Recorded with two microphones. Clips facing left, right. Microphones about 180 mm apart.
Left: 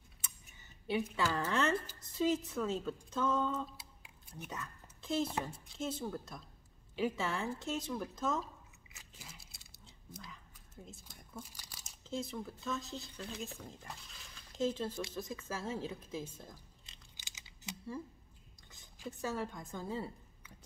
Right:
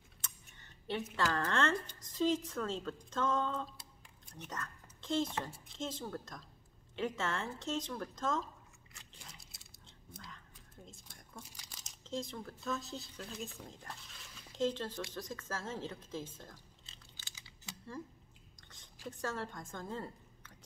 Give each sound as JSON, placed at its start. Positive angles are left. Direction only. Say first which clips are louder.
{"t": 0.2, "sound": "a woman's voice", "louder": "right 1 dB", "side_deg": 5}
{"t": 8.9, "sound": "biting", "louder": "left 1 dB", "side_deg": 5}
{"t": 10.9, "sound": "a woman's voice", "louder": "left 3 dB", "side_deg": 5}
{"t": 17.2, "sound": "typing", "louder": "left 5 dB", "side_deg": 20}
{"t": 18.6, "sound": "a sound", "louder": "left 1 dB", "side_deg": 5}
{"t": 19.7, "sound": "a woman's voice", "louder": "left 2 dB", "side_deg": 5}